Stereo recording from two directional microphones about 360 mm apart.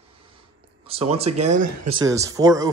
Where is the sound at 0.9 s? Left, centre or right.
Centre.